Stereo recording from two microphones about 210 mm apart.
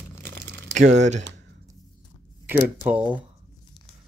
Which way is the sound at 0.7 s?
35° right (ahead or behind).